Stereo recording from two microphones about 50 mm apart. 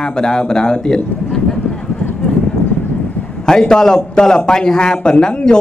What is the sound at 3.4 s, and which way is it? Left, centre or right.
A man's voice, centre.